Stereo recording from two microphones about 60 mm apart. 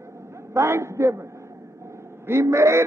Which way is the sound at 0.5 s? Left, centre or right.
Right.